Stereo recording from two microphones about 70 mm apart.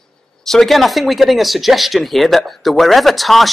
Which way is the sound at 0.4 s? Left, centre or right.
Centre.